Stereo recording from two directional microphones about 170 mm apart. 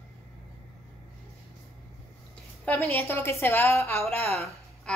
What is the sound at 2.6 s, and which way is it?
A woman's voice, 15° left (ahead or behind).